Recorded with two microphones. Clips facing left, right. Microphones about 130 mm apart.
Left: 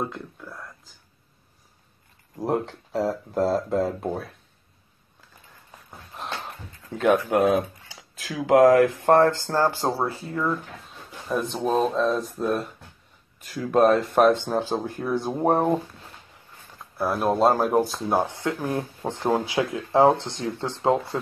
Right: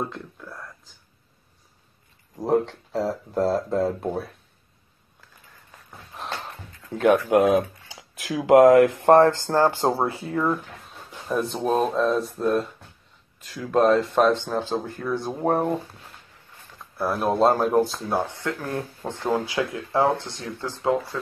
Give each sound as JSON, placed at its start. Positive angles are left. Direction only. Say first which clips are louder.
{"t": 0.0, "sound": "whispering", "louder": "even", "side_deg": 0}
{"t": 2.3, "sound": "speech", "louder": "right 3 dB", "side_deg": 0}
{"t": 6.1, "sound": "a sound", "louder": "even", "side_deg": 0}
{"t": 7.0, "sound": "speech", "louder": "right 2 dB", "side_deg": -10}
{"t": 7.9, "sound": "a sound", "louder": "right 2 dB", "side_deg": -15}
{"t": 8.3, "sound": "speech", "louder": "right 2 dB", "side_deg": -25}
{"t": 11.2, "sound": "speech", "louder": "right 1 dB", "side_deg": 0}
{"t": 13.5, "sound": "speech", "louder": "even", "side_deg": 15}
{"t": 16.7, "sound": "speech", "louder": "even", "side_deg": 0}